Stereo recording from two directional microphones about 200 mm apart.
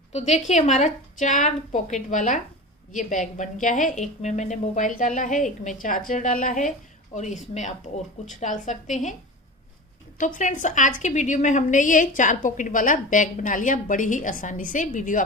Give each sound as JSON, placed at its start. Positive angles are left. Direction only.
{"t": 0.1, "sound": "a woman's voice", "side_deg": 35}
{"t": 10.1, "sound": "a woman's voice", "side_deg": 40}